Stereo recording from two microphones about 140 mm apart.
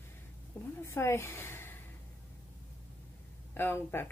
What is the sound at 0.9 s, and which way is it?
Speech, 20° left (ahead or behind).